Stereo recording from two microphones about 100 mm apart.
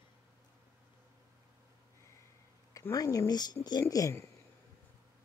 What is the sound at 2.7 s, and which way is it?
Speech, 35° left (ahead or behind).